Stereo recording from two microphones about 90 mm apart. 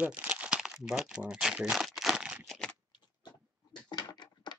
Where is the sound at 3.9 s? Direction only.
55° left (ahead or behind).